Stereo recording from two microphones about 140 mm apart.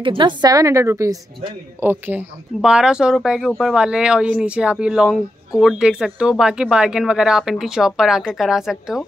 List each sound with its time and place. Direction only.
0.0 s a woman's voice: 35° right (ahead or behind); by 9.0 s 5° right (ahead or behind)